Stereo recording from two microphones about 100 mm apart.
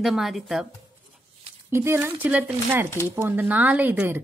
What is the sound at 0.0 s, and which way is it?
Speech, 5° right (ahead or behind).